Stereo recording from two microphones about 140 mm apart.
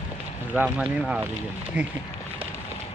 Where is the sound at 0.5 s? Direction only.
5° right (ahead or behind).